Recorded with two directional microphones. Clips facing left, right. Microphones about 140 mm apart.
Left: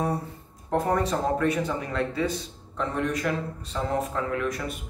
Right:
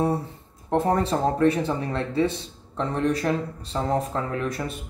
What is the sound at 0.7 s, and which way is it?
Speech, 30° right (ahead or behind).